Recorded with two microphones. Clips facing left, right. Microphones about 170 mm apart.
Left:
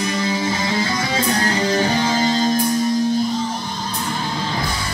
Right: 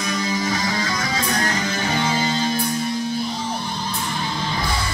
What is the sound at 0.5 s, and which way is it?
Music, 25° left (ahead or behind).